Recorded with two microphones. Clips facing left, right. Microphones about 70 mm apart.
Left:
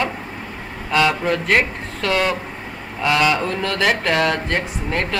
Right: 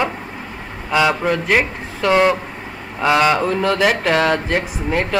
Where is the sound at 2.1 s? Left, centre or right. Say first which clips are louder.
Right 6 dB; right.